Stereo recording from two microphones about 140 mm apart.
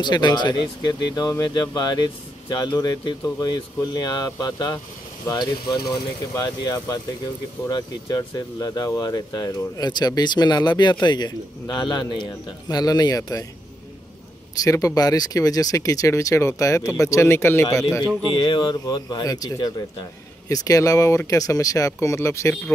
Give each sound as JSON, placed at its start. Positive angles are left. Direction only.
{"t": 0.0, "sound": "speech", "side_deg": 30}
{"t": 14.6, "sound": "speech", "side_deg": 25}
{"t": 18.4, "sound": "speech", "side_deg": 35}